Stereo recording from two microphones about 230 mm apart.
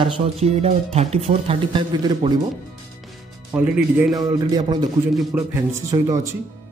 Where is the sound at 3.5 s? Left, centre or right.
Centre.